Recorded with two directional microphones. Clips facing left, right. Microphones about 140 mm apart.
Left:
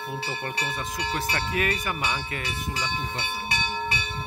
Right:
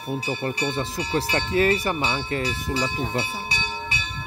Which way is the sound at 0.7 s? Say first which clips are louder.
Right 4 dB; 30° right (ahead or behind).